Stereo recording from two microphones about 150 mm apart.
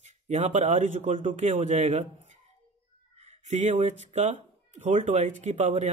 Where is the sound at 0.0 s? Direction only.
50° right (ahead or behind).